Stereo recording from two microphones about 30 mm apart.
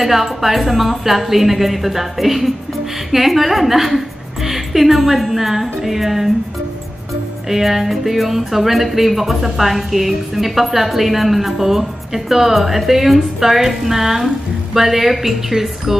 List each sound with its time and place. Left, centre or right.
0.0 s a woman's voice: centre
7.4 s speech: centre